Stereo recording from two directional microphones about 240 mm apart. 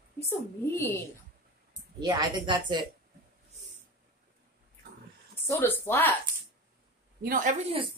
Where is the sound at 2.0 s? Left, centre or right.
Centre.